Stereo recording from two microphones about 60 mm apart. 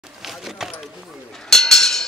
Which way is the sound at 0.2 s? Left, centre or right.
Centre.